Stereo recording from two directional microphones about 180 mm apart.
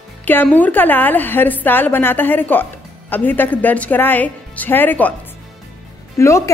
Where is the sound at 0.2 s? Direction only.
10° left (ahead or behind).